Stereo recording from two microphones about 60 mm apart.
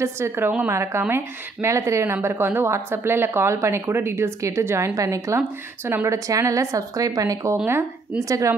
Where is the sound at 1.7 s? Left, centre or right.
Right.